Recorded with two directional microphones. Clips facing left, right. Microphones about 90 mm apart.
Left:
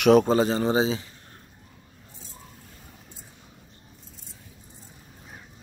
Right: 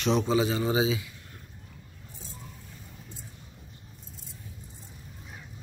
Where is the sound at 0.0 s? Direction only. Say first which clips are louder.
Left 7 dB; 50° left (ahead or behind); by 1.0 s 35° left (ahead or behind).